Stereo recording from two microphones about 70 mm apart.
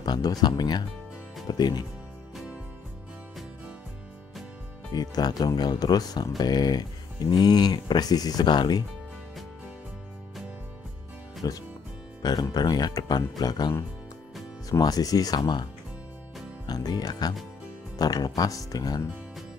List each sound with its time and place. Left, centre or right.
0.0 s speech: left
4.9 s speech: left
11.4 s speech: left
12.2 s speech: left
14.7 s speech: left
16.6 s speech: left